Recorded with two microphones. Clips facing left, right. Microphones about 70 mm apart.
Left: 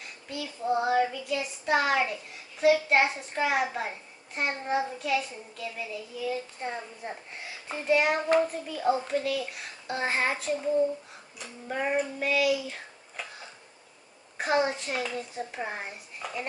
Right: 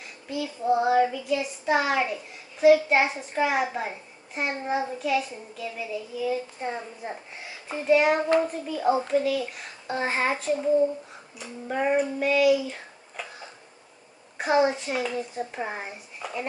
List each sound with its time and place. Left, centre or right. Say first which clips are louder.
0.0 s child singing: right 5 dB; centre